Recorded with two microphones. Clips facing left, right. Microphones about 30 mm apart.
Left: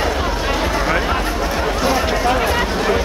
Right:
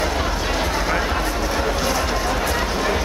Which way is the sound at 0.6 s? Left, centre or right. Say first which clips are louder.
Left 3 dB; centre.